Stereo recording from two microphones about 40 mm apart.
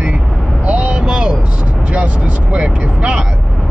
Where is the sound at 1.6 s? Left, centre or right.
Right.